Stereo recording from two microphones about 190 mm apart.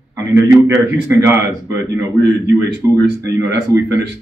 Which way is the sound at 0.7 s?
10° right (ahead or behind).